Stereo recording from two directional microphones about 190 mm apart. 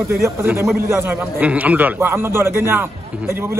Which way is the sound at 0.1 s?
15° right (ahead or behind).